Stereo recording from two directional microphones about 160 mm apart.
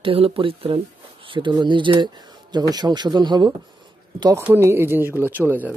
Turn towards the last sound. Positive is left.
turn(degrees=-10)  # may be behind; listen again after turning